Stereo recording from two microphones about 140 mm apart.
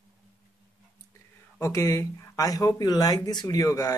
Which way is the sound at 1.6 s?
20° left (ahead or behind).